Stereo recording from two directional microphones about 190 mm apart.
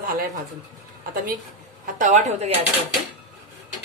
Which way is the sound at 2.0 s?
40° right (ahead or behind).